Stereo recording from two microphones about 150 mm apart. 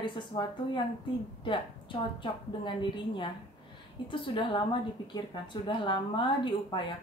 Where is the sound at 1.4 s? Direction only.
30° left (ahead or behind).